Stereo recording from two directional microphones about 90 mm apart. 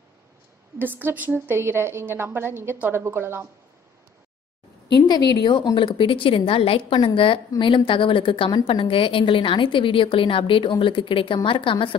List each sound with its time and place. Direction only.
0.7 s a woman's voice: 20° right (ahead or behind)
5.0 s a woman's voice: 50° left (ahead or behind); by 7.1 s 85° left
7.2 s a woman's voice: 75° left (ahead or behind)
8.6 s a woman's voice: 80° left